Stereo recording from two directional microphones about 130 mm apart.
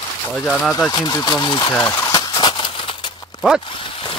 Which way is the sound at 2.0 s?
30° left (ahead or behind).